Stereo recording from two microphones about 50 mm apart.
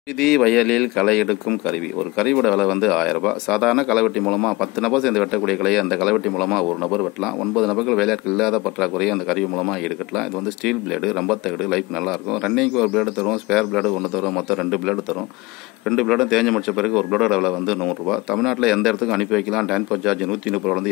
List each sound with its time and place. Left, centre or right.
0.2 s a man's voice: centre